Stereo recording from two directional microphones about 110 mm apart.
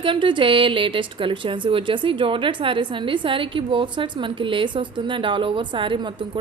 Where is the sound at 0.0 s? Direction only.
50° right (ahead or behind).